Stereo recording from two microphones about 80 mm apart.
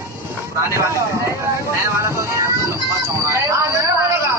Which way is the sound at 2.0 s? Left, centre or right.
Right.